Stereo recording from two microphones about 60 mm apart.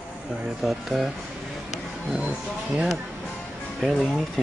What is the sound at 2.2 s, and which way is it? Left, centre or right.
Speech, centre.